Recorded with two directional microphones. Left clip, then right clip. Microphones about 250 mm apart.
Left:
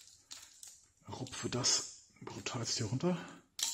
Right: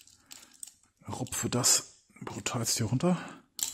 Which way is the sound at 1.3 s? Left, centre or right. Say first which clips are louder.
Right 6 dB; right.